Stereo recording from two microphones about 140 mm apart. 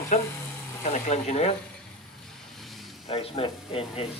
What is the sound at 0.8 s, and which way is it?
Speech, 50° left (ahead or behind).